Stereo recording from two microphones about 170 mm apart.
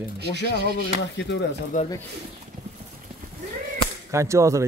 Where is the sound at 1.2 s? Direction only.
90° left.